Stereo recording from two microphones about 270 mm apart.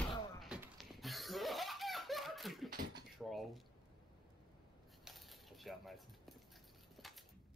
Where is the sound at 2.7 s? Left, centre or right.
Right.